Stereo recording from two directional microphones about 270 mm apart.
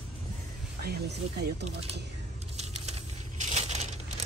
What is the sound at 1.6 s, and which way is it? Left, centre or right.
Speech, right.